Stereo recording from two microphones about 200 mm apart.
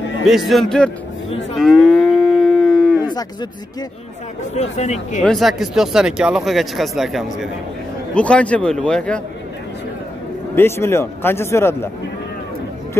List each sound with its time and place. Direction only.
0.2 s speech: centre (ahead or behind)
1.6 s livestock: centre (ahead or behind)
3.0 s cattle: 20° left (ahead or behind)
4.6 s speech: 35° left (ahead or behind)
5.2 s speech: centre (ahead or behind)
10.5 s speech: 10° left (ahead or behind)